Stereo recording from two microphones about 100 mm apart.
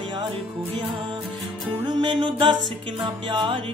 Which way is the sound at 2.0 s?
50° right (ahead or behind).